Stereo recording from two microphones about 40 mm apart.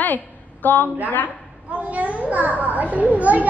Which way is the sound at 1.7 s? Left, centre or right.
Right.